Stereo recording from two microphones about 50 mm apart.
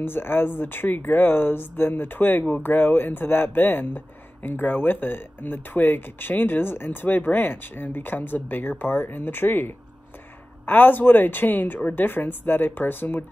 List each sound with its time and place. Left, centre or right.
0.0 s speech: left